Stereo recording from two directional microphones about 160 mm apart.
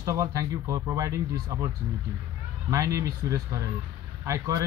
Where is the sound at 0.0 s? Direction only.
20° right (ahead or behind).